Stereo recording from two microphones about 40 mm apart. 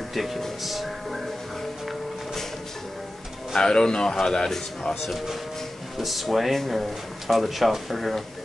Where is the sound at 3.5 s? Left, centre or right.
Centre.